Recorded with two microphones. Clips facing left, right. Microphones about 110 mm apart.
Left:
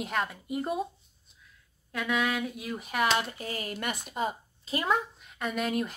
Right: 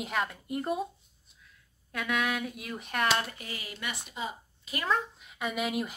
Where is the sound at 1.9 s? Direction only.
Centre (ahead or behind).